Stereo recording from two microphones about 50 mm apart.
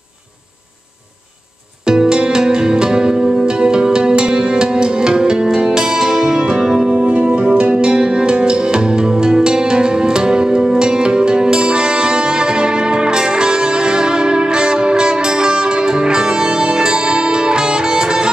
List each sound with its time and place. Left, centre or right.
1.9 s music: centre
6.9 s music: right